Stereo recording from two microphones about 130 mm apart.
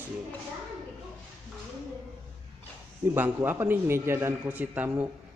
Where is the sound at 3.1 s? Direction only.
15° right (ahead or behind).